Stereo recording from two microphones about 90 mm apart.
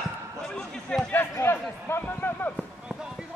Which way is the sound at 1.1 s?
25° left (ahead or behind).